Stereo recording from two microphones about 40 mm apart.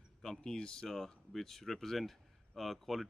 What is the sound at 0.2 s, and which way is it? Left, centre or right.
Speech, centre.